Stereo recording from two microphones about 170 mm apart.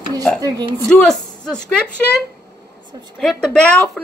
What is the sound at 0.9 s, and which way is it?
Speech, 5° left (ahead or behind).